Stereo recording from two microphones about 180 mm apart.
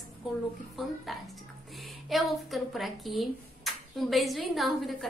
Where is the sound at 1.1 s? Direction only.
Centre (ahead or behind).